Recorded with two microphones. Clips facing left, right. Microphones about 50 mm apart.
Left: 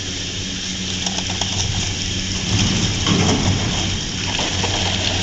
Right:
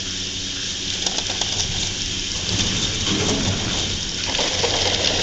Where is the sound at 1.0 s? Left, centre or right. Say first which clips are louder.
Left 1 dB; left.